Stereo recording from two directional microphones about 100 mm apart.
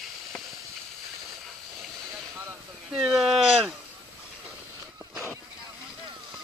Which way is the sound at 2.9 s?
5° right (ahead or behind).